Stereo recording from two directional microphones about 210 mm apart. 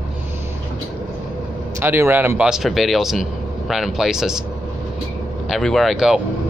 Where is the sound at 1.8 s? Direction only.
10° right (ahead or behind).